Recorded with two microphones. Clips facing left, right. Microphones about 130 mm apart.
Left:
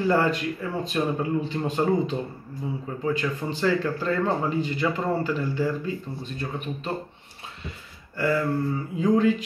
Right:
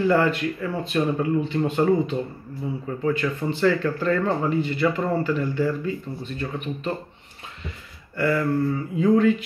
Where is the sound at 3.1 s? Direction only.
15° left (ahead or behind).